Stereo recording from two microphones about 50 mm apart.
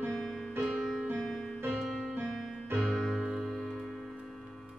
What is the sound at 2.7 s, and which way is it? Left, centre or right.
Music, centre.